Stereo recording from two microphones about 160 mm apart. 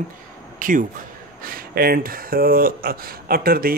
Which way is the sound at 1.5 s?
70° right (ahead or behind).